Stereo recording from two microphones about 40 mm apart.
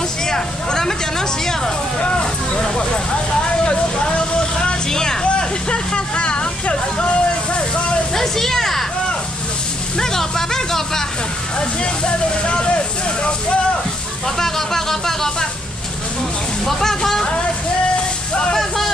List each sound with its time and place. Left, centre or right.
0.3 s a sound: centre
2.0 s vehicle: left
3.6 s music: left
4.8 s vehicle: centre
5.2 s vehicle: left
8.1 s a sound: centre
9.9 s a sound: centre
11.8 s speech: left
14.4 s a sound: centre
16.6 s speech: centre
17.2 s music: left
18.3 s speech: left